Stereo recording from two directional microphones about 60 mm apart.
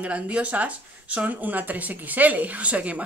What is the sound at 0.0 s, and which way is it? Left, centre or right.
Speech, right.